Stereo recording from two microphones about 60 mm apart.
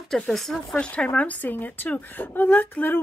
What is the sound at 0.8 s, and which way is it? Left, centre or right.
Speech, centre.